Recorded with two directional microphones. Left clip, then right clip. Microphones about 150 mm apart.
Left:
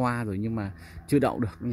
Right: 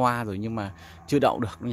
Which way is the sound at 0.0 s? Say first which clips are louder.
Right 5 dB; 10° right (ahead or behind).